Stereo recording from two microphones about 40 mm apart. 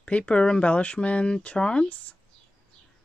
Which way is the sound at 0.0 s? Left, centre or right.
Left.